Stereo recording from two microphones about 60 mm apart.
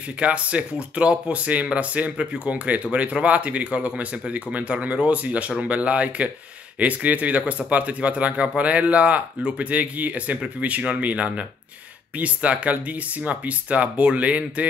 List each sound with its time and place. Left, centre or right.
0.2 s speech: right